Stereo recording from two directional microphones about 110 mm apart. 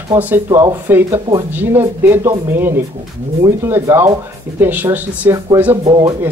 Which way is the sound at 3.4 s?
25° right (ahead or behind).